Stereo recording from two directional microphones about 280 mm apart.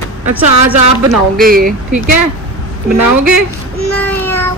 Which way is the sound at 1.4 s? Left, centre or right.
Right.